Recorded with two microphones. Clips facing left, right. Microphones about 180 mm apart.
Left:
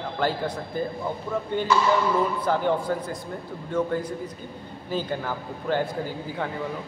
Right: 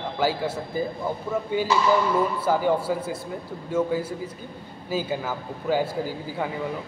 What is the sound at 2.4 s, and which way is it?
A man's voice, 5° right (ahead or behind).